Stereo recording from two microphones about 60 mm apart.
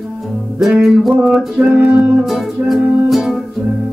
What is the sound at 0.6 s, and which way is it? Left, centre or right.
Music, centre.